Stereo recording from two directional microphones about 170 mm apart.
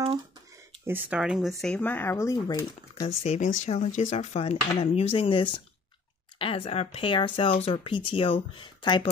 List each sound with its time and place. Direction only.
0.8 s speech: 10° right (ahead or behind)
1.6 s speech: 5° left (ahead or behind); by 3.1 s 25° left (ahead or behind)
3.3 s speech: 45° left (ahead or behind); by 9.1 s 25° left (ahead or behind)